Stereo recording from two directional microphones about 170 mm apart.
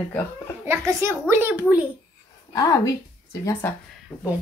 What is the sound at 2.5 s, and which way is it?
A woman's voice, 20° left (ahead or behind).